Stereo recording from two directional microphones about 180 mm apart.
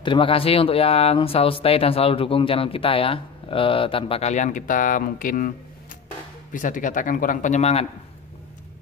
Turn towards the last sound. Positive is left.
turn(degrees=35)  # may be behind; listen again after turning